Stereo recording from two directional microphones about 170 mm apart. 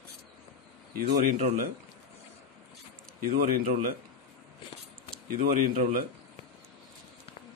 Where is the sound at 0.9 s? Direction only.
55° right (ahead or behind).